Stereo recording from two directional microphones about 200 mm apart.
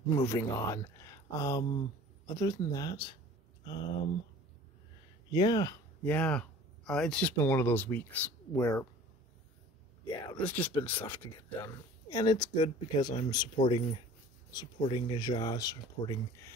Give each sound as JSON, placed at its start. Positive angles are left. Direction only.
{"t": 0.1, "sound": "speech", "side_deg": 15}
{"t": 5.3, "sound": "speech", "side_deg": 20}
{"t": 10.0, "sound": "speech", "side_deg": 25}
{"t": 10.4, "sound": "speech", "side_deg": 10}